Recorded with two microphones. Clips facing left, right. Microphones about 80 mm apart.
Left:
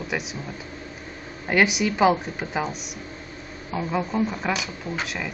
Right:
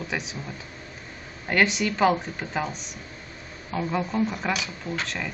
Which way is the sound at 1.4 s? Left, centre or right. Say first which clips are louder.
Left 2 dB; centre.